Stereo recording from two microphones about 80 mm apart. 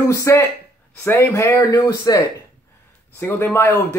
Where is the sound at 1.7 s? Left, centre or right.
Left.